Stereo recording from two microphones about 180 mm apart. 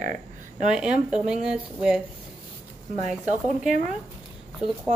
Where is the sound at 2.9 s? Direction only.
45° right (ahead or behind).